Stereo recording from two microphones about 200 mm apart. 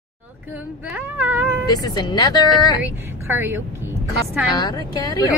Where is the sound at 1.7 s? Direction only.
20° left (ahead or behind).